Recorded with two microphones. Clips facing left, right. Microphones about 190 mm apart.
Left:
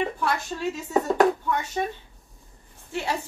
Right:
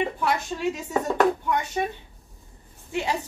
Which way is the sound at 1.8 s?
15° right (ahead or behind).